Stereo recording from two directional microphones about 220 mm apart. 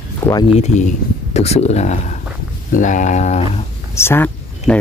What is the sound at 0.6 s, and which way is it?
Speech, 30° left (ahead or behind).